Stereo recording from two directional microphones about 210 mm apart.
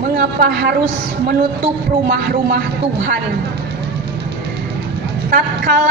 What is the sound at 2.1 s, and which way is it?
Speech, 50° right (ahead or behind).